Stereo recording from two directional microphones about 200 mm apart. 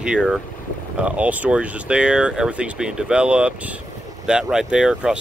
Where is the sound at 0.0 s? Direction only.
5° right (ahead or behind).